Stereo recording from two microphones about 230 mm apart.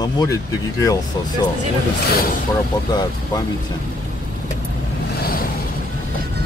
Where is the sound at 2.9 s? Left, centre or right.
Centre.